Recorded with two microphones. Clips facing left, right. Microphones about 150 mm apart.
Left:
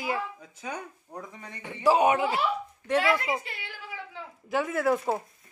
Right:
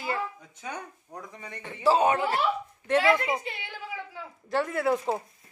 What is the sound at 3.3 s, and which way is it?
Speech, 20° right (ahead or behind).